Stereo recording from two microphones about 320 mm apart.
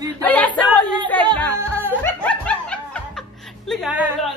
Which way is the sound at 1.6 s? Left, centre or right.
Centre.